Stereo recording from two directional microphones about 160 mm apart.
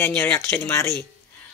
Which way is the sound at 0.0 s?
15° left (ahead or behind).